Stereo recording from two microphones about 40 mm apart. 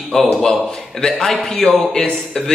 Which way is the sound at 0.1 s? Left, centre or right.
Centre.